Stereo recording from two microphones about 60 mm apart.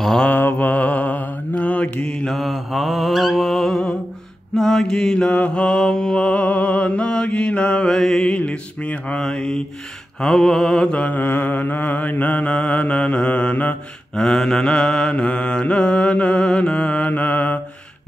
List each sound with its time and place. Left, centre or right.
0.3 s mantra: left
2.2 s mantra: centre
7.9 s mantra: centre
11.1 s mantra: left
14.1 s mantra: centre
17.1 s mantra: left